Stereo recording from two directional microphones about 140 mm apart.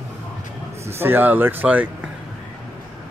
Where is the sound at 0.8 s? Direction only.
15° right (ahead or behind).